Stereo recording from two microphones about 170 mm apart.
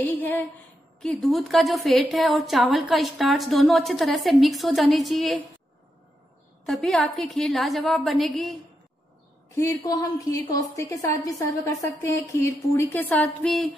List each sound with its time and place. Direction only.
0.0 s speech: 10° left (ahead or behind)
1.0 s a woman's voice: centre (ahead or behind)
6.6 s a woman's voice: centre (ahead or behind)
9.6 s a woman's voice: 20° left (ahead or behind)
13.1 s a woman's voice: 5° left (ahead or behind)